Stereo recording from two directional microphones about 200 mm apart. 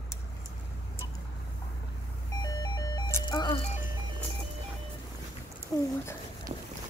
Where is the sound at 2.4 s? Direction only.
20° left (ahead or behind).